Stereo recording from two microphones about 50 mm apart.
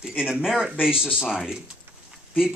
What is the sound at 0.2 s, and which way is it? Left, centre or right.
A man's voice, centre.